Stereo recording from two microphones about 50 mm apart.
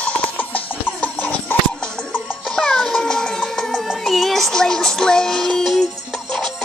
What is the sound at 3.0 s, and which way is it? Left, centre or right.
Cat, centre.